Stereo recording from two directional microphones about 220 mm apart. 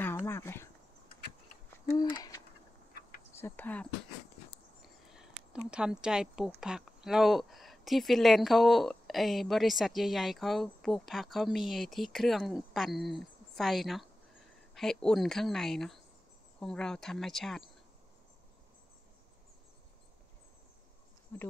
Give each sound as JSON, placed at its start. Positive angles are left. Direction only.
{"t": 0.0, "sound": "a sound", "side_deg": 10}
{"t": 1.9, "sound": "owl", "side_deg": 20}
{"t": 3.3, "sound": "speech", "side_deg": 10}
{"t": 21.3, "sound": "speech", "side_deg": 10}